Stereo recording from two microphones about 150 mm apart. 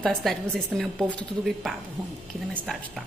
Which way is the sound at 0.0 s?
Centre (ahead or behind).